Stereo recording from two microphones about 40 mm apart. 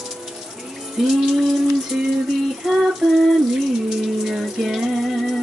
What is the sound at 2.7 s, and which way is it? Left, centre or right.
Water tap, centre.